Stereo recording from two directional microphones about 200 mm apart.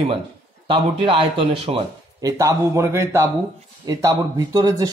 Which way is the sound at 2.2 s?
15° right (ahead or behind).